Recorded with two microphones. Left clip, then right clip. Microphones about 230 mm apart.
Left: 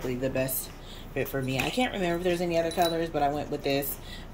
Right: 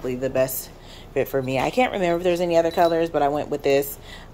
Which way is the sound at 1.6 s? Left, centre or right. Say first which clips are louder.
Right 7 dB; right.